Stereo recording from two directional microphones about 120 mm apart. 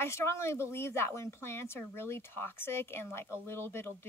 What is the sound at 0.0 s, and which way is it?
Speech, 25° left (ahead or behind).